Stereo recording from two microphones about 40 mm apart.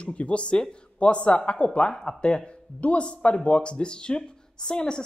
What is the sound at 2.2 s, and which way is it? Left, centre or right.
Speech, left.